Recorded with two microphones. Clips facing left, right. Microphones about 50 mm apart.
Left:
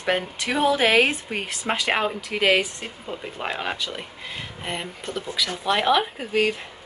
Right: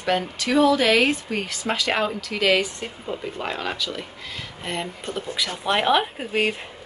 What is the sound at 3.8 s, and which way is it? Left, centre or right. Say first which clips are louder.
Speech: right 1 dB; left.